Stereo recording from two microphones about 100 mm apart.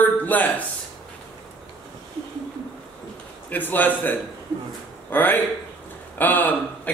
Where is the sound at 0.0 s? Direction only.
15° left (ahead or behind).